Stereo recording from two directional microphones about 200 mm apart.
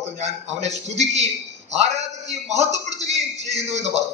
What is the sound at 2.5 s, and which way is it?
A man's voice, 35° right (ahead or behind).